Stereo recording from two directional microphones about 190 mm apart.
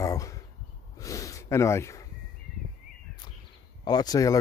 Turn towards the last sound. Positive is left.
turn(degrees=20)  # may be behind; listen again after turning